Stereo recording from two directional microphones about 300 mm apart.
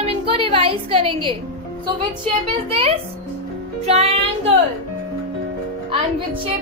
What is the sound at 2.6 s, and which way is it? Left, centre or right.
A woman's voice, centre.